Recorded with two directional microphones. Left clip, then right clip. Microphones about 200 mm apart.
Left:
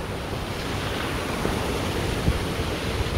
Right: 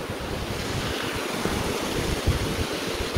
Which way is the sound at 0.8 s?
35° right (ahead or behind).